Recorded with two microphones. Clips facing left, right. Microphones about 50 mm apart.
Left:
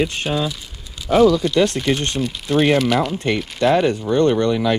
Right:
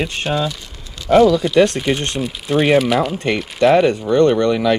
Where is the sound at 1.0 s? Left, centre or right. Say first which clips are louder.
Right 2 dB; centre.